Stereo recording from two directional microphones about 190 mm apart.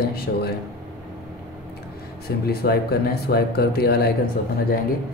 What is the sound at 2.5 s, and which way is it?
Speech, 55° left (ahead or behind).